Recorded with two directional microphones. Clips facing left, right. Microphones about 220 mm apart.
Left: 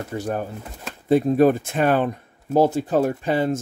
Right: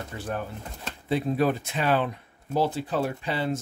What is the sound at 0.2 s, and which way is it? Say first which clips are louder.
Speech: left 3 dB; 45° left (ahead or behind).